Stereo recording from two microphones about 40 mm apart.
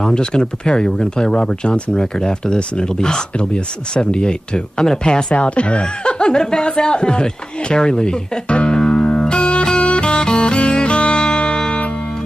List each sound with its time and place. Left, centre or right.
0.0 s speech: left
9.2 s music: left